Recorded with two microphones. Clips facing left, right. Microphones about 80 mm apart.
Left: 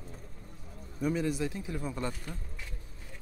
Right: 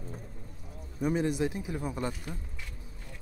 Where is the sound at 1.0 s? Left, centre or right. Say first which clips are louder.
Right 2 dB; right.